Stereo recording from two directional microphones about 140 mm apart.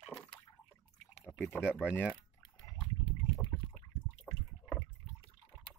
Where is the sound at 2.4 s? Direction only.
30° left (ahead or behind).